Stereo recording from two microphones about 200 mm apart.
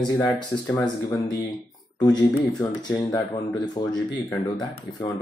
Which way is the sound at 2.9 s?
10° left (ahead or behind).